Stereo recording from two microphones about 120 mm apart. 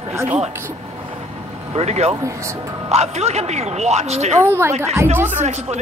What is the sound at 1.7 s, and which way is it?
A man's voice, 65° right (ahead or behind).